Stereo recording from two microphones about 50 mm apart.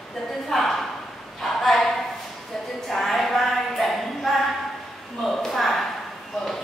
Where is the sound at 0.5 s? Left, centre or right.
Centre.